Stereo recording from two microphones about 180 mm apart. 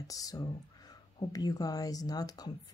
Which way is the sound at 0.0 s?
20° left (ahead or behind).